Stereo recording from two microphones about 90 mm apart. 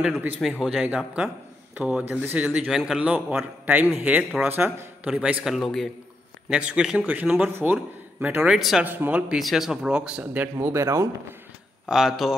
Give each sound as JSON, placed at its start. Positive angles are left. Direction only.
{"t": 0.4, "sound": "speech", "side_deg": -5}
{"t": 5.4, "sound": "speech", "side_deg": 0}
{"t": 6.5, "sound": "a man's voice", "side_deg": -10}
{"t": 8.5, "sound": "speech", "side_deg": -5}
{"t": 8.8, "sound": "speech", "side_deg": -20}
{"t": 9.3, "sound": "speech", "side_deg": 0}
{"t": 10.4, "sound": "speech", "side_deg": -30}
{"t": 11.9, "sound": "speech", "side_deg": -5}